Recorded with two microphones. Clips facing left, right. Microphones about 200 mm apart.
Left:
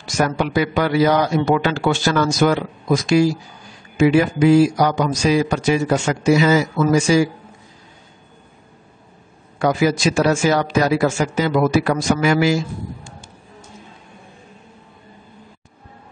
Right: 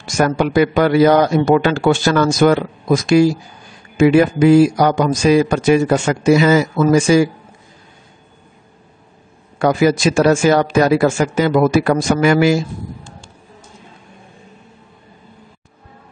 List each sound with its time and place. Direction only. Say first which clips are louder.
0.0 s a man's voice: right 4 dB; 50° right (ahead or behind)
9.6 s a man's voice: right 3 dB; 55° right (ahead or behind)